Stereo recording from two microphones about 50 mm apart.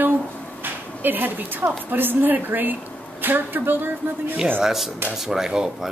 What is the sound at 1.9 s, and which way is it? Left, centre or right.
A woman's voice, right.